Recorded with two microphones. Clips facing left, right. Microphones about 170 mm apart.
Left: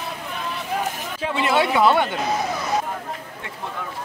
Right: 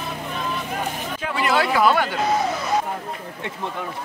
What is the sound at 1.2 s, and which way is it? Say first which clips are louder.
Speech: left 1 dB; 25° left (ahead or behind).